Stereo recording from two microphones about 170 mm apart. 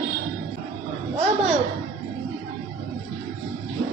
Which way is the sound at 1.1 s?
40° right (ahead or behind).